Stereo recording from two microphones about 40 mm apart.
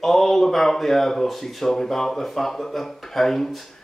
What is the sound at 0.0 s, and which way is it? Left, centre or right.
Speech, centre.